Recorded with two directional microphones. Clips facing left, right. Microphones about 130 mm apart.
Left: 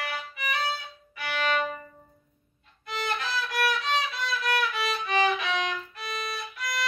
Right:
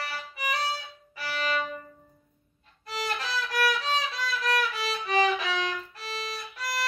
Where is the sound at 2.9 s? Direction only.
35° right (ahead or behind).